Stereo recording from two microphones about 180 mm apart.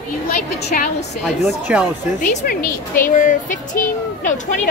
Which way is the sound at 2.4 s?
55° left (ahead or behind).